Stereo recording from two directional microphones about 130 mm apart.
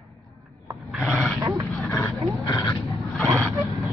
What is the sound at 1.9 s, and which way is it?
Roaring cats, 25° left (ahead or behind).